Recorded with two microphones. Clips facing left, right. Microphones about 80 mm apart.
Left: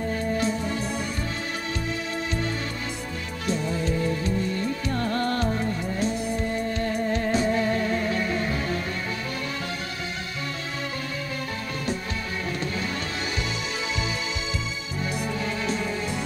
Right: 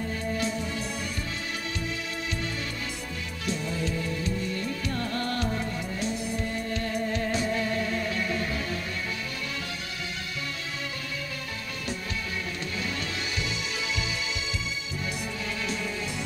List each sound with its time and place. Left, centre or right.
3.4 s music: left
6.7 s music: left
15.6 s music: left